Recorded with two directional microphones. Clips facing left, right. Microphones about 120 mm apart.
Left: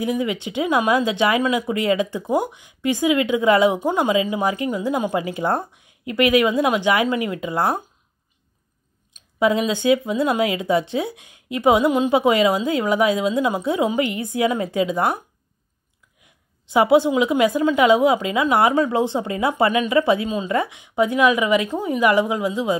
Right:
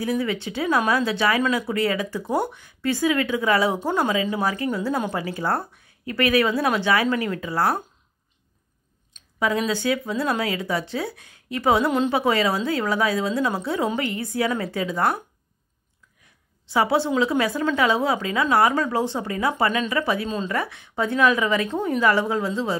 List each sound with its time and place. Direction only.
0.0 s speech: 15° left (ahead or behind)
9.4 s speech: 20° left (ahead or behind)
16.6 s speech: 20° left (ahead or behind)